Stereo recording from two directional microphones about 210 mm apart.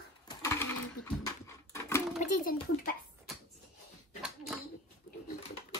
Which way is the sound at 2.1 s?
35° left (ahead or behind).